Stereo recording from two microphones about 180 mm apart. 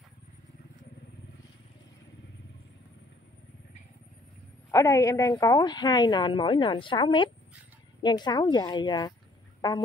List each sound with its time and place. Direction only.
4.6 s a woman's voice: 15° left (ahead or behind)
9.6 s fowl: 25° left (ahead or behind)